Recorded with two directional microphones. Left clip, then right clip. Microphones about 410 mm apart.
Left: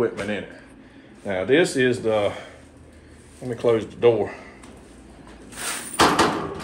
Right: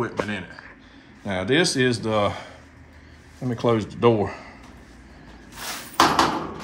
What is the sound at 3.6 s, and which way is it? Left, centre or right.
Speech, centre.